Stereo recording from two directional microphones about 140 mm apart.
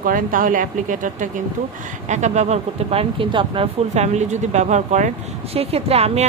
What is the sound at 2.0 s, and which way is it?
Speech, 55° right (ahead or behind).